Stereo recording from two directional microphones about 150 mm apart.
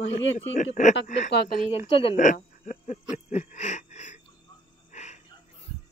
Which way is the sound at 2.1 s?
60° left (ahead or behind).